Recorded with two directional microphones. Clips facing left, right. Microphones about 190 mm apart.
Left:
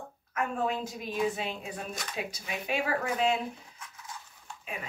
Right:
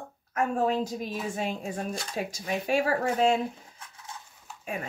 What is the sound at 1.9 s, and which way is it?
Speech, 30° right (ahead or behind).